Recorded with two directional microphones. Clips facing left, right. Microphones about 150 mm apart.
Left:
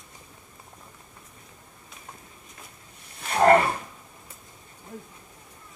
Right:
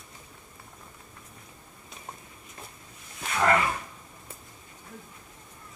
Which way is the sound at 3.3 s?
40° left (ahead or behind).